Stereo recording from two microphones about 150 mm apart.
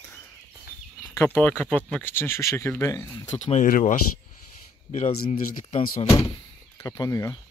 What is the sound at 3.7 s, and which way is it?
Speech, 60° left (ahead or behind).